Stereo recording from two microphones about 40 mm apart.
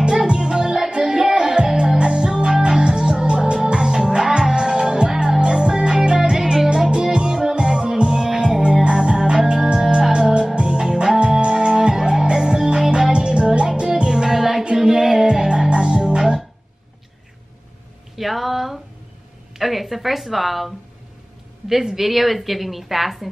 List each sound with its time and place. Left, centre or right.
0.3 s music: centre
1.7 s music: centre
2.0 s music: right
6.9 s music: right
18.1 s a sound: centre
21.6 s a woman's voice: centre